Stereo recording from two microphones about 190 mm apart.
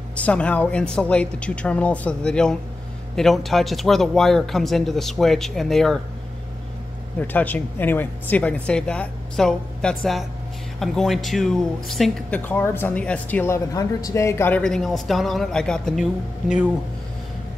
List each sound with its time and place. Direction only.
0.1 s speech: 5° left (ahead or behind)
7.2 s speech: 10° left (ahead or behind)